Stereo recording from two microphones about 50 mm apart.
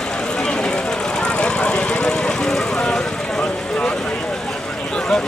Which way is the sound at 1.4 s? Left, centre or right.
Left.